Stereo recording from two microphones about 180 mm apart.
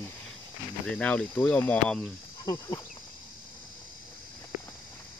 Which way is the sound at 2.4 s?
25° left (ahead or behind).